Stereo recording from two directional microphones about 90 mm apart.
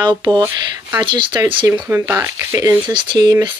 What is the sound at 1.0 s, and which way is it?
Speech, 65° right (ahead or behind).